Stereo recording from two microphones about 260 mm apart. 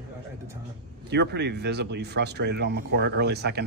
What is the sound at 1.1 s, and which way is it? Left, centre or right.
Speech, right.